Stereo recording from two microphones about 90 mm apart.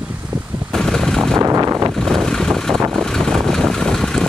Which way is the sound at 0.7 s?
5° left (ahead or behind).